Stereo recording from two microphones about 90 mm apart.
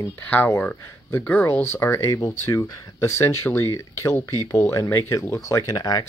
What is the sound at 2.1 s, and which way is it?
Speech, 35° left (ahead or behind).